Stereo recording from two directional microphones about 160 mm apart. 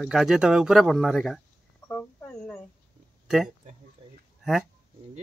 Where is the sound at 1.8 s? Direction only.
10° left (ahead or behind).